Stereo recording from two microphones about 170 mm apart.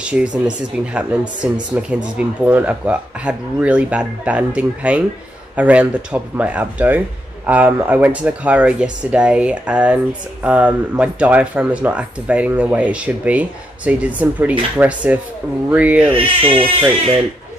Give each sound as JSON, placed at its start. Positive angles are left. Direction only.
{"t": 0.0, "sound": "speech", "side_deg": -5}
{"t": 16.1, "sound": "speech", "side_deg": -30}